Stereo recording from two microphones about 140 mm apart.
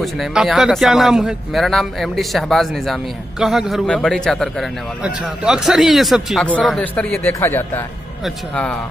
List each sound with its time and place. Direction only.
0.0 s speech: centre (ahead or behind)
6.8 s a man's voice: 10° left (ahead or behind)